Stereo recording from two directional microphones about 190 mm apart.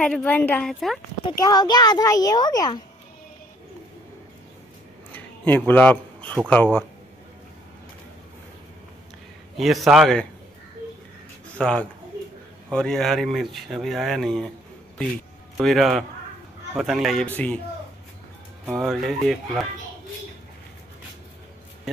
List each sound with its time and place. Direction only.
0.0 s speech: 5° left (ahead or behind)
1.2 s a child's voice: 20° left (ahead or behind)
5.1 s a sound: 10° left (ahead or behind)
6.5 s speech: 10° left (ahead or behind)
9.6 s speech: centre (ahead or behind)
11.5 s speech: 5° left (ahead or behind)
15.5 s speech: centre (ahead or behind)
18.8 s speech: centre (ahead or behind)